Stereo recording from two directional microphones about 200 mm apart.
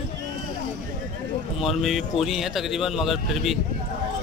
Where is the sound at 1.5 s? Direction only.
Centre (ahead or behind).